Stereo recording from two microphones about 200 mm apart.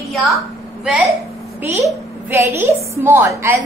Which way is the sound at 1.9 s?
10° right (ahead or behind).